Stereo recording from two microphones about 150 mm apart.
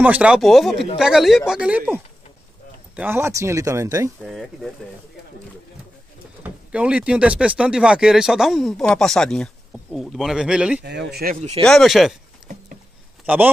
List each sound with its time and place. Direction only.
0.0 s speech: 10° right (ahead or behind)
3.0 s speech: 15° right (ahead or behind)
4.2 s speech: centre (ahead or behind)
6.4 s speech: 10° right (ahead or behind)
10.8 s speech: 90° right
11.6 s speech: centre (ahead or behind)
13.2 s speech: 10° right (ahead or behind)